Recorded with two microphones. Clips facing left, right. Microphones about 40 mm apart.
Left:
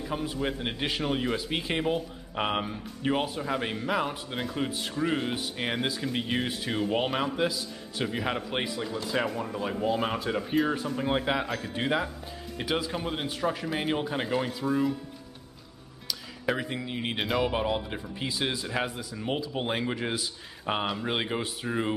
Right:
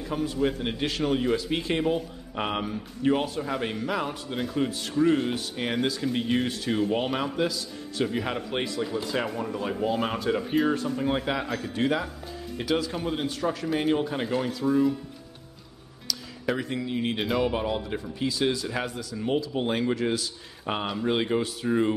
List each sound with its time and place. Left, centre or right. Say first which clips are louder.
0.0 s a man's voice: right 4 dB; centre
11.0 s a man's voice: right 1 dB; centre
16.1 s speech: right 1 dB; centre
17.2 s a man's voice: left 1 dB; centre